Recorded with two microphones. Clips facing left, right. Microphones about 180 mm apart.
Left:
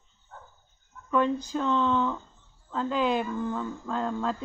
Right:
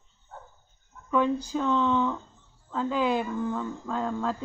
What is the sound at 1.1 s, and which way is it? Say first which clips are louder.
Speech: even; 10° right (ahead or behind).